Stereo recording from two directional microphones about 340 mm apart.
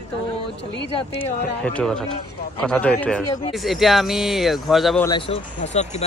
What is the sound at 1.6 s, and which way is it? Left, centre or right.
Speech, centre.